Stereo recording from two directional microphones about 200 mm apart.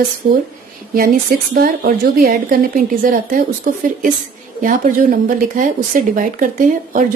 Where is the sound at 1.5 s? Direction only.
50° right (ahead or behind).